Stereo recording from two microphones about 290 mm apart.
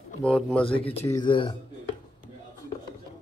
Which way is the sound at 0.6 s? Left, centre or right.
Centre.